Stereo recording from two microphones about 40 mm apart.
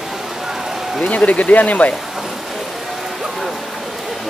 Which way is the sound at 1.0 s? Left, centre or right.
Left.